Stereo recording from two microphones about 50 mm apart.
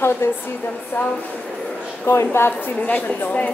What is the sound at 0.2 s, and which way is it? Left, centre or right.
Speech, left.